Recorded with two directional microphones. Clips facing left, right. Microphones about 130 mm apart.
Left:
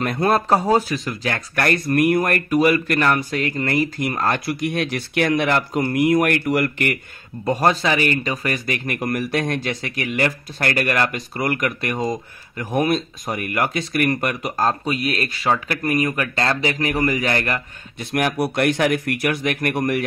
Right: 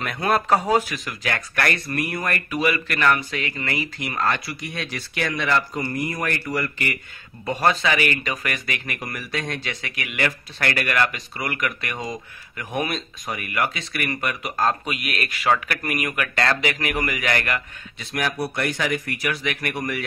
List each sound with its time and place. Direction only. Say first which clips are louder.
0.0 s speech: left 4 dB; 35° left (ahead or behind)
2.0 s speech: left 9 dB; 55° left (ahead or behind)
7.4 s speech: left 3 dB; 40° left (ahead or behind)
14.6 s speech: left 2 dB; 35° left (ahead or behind)
17.9 s speech: left 5 dB; 55° left (ahead or behind)